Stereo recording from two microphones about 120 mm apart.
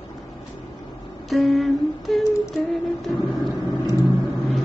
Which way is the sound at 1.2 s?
Centre (ahead or behind).